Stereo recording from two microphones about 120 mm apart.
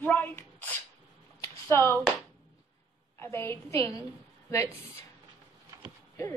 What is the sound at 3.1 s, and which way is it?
A woman's voice, 20° left (ahead or behind).